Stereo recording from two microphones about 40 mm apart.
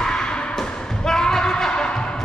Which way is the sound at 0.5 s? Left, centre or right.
Centre.